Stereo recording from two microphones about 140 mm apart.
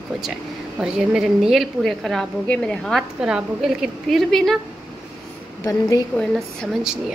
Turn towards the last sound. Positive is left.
turn(degrees=5)  # may be behind; listen again after turning